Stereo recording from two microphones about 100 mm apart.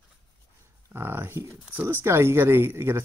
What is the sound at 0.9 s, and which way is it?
Speech, 20° right (ahead or behind).